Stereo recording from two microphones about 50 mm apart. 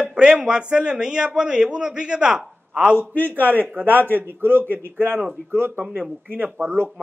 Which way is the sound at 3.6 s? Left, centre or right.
Right.